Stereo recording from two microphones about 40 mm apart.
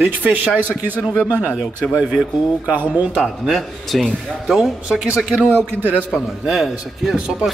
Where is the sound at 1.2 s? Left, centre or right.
Right.